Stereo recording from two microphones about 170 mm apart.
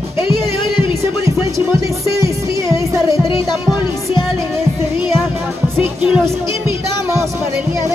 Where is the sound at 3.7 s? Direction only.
25° left (ahead or behind).